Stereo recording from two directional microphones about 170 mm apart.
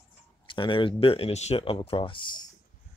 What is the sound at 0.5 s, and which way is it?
Speech, 30° left (ahead or behind).